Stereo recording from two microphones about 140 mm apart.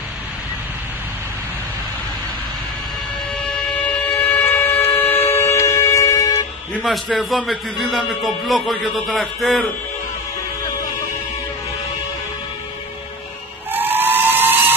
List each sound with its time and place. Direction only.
4.4 s vehicle: 15° left (ahead or behind)
6.8 s a man's voice: centre (ahead or behind)
13.7 s a sound: 15° right (ahead or behind)